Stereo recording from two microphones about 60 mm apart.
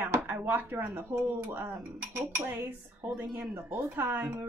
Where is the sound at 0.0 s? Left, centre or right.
Right.